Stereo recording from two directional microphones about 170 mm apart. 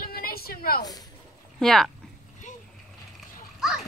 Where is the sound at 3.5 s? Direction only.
5° right (ahead or behind).